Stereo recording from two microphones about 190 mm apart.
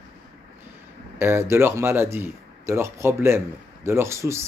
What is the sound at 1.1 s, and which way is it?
Speech, 15° right (ahead or behind).